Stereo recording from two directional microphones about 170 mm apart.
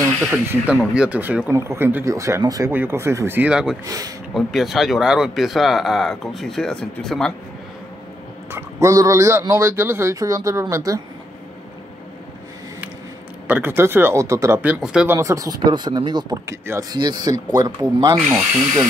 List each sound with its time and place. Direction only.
0.2 s speech: 10° right (ahead or behind)
3.8 s speech: 20° right (ahead or behind)
4.3 s speech: centre (ahead or behind)
8.5 s speech: 15° right (ahead or behind)
13.5 s speech: 15° right (ahead or behind)
15.1 s speech: 20° right (ahead or behind)